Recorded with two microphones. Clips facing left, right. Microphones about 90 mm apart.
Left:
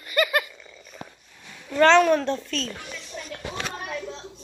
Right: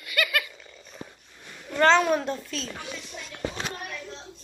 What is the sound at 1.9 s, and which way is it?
Speech, 10° right (ahead or behind).